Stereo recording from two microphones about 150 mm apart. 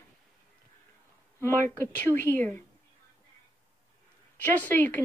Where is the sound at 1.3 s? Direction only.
15° left (ahead or behind).